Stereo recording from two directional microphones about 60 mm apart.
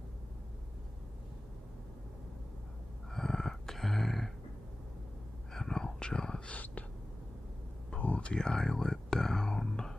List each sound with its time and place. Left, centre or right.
3.1 s a sound: centre
5.5 s whispering: centre
6.5 s speech: left
7.9 s whispering: centre